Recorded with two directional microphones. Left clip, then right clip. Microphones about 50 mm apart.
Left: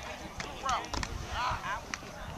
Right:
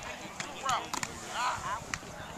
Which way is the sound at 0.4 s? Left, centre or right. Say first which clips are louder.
Right 1 dB; centre.